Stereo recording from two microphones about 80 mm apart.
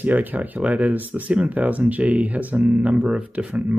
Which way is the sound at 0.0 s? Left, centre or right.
Right.